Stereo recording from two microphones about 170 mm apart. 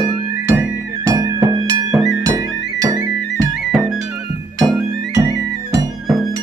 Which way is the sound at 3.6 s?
Centre (ahead or behind).